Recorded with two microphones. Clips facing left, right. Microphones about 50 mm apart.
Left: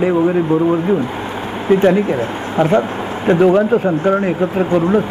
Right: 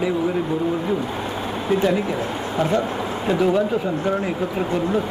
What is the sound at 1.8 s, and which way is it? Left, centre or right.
Speech, left.